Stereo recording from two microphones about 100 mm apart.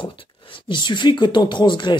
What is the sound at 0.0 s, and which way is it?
Speech, 55° left (ahead or behind).